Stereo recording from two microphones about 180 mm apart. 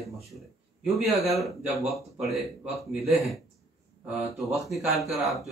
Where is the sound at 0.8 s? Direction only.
Centre (ahead or behind).